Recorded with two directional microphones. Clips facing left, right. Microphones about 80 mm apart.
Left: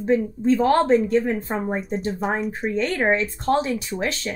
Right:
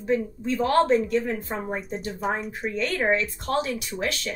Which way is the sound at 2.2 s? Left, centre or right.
Centre.